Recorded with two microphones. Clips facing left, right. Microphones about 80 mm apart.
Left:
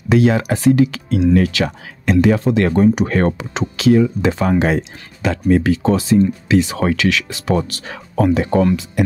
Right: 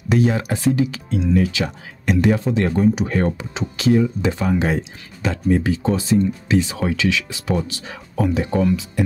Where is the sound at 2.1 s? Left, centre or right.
Left.